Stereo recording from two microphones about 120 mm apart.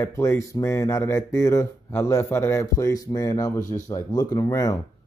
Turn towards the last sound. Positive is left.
turn(degrees=30)  # may be behind; listen again after turning